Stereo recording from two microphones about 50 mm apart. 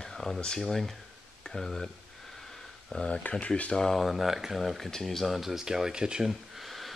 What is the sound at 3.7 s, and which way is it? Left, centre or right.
Speech, centre.